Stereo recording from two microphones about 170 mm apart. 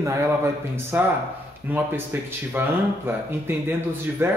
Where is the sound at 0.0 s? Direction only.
15° right (ahead or behind).